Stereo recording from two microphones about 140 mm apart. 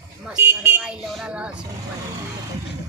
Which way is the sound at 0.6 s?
10° right (ahead or behind).